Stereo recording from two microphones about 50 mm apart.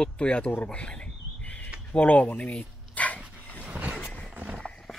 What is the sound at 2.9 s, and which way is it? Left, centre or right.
Dog, left.